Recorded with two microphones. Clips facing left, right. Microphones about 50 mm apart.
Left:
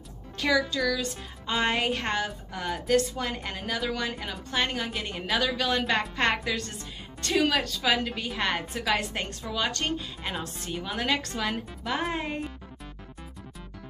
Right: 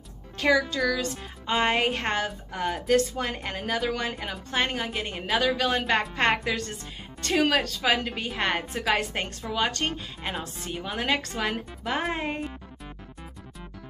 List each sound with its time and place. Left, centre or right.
0.4 s a woman's voice: right